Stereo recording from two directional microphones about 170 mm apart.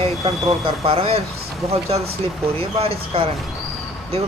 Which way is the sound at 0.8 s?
35° right (ahead or behind).